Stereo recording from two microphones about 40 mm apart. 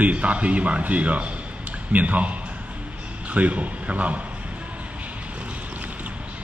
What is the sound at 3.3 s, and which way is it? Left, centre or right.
Speech, right.